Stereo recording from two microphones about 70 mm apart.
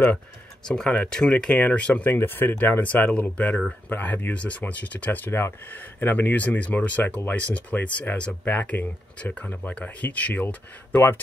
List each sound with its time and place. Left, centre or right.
0.7 s speech: centre
2.1 s speech: left